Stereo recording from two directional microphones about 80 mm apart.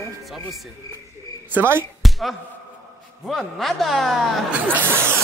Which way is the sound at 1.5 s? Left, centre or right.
Right.